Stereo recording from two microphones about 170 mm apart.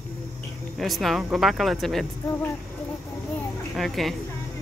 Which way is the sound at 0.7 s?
Centre (ahead or behind).